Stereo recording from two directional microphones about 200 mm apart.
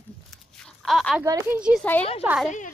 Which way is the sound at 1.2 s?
15° right (ahead or behind).